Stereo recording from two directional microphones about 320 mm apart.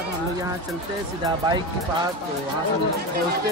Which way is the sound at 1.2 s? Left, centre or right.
Centre.